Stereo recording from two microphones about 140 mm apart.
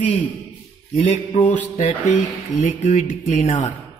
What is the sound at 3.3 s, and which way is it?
Music, 55° left (ahead or behind).